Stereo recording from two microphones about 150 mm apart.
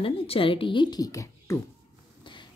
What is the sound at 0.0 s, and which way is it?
A woman's voice, 40° left (ahead or behind).